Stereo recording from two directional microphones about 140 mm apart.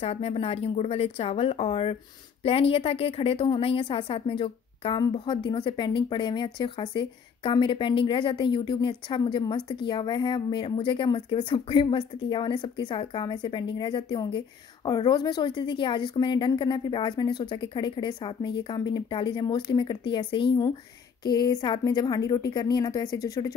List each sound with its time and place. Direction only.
0.0 s a woman's voice: 45° left (ahead or behind); by 23.5 s 25° left (ahead or behind)